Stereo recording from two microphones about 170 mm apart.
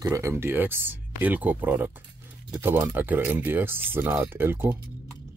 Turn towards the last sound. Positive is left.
turn(degrees=-10)  # may be behind; listen again after turning